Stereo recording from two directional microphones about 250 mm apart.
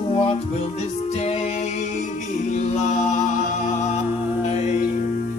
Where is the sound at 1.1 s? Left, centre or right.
Left.